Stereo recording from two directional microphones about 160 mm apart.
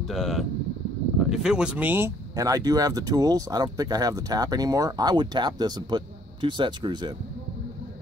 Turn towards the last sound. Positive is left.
turn(degrees=-30)  # may be behind; listen again after turning